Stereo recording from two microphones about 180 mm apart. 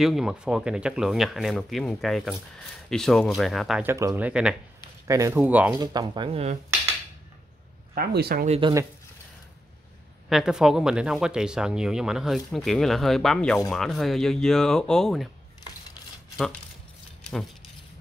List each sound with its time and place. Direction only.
0.0 s speech: centre (ahead or behind)
3.8 s speech: 15° right (ahead or behind)
5.0 s speech: 15° right (ahead or behind)
5.8 s speech: 25° right (ahead or behind)
7.9 s speech: 60° right (ahead or behind)
8.5 s speech: 30° right (ahead or behind)
10.3 s speech: 5° right (ahead or behind)